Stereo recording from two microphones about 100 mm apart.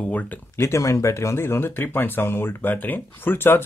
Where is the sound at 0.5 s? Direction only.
30° left (ahead or behind).